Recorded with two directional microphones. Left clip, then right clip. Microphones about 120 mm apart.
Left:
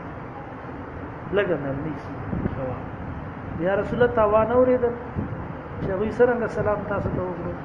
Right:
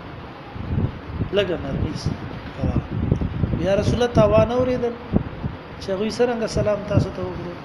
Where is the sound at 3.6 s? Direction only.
60° right (ahead or behind).